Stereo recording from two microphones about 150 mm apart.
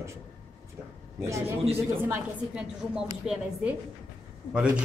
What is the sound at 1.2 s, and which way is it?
Speech, 20° right (ahead or behind).